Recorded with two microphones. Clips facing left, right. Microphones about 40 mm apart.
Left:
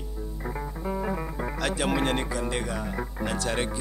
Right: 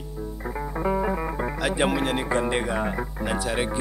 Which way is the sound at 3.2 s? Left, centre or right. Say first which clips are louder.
Right 2 dB; centre.